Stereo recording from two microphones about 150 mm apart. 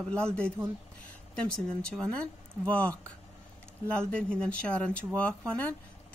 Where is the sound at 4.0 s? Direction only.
5° left (ahead or behind).